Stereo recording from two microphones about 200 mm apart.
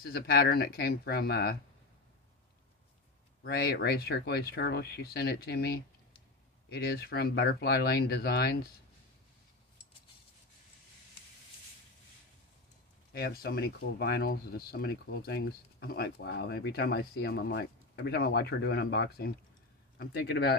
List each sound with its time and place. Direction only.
0.0 s speech: 50° left (ahead or behind)
3.4 s speech: 50° left (ahead or behind)
13.1 s speech: 50° left (ahead or behind)